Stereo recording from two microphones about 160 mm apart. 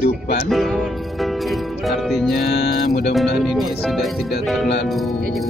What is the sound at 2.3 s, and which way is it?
Music, 80° left.